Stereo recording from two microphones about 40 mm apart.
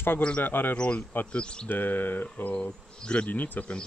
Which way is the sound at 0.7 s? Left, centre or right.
Left.